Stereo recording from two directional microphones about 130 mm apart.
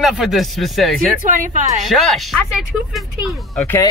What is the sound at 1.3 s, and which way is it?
Speech, 75° right (ahead or behind).